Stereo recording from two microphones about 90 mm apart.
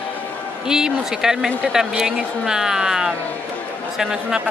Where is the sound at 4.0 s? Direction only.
5° right (ahead or behind).